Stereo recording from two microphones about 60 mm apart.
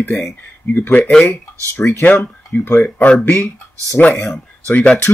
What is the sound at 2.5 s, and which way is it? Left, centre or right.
Speech, left.